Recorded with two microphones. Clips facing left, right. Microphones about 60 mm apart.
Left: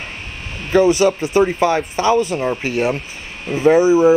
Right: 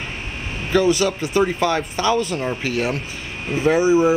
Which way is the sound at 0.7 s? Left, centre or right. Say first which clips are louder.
Left 4 dB; left.